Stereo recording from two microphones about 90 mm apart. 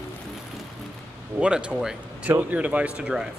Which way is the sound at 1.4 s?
10° right (ahead or behind).